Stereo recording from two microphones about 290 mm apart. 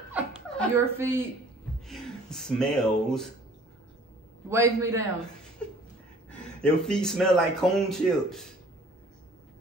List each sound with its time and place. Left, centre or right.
0.1 s chuckle: centre
1.9 s speech: centre
4.5 s a man's voice: centre
5.6 s a sound: centre
6.6 s speech: centre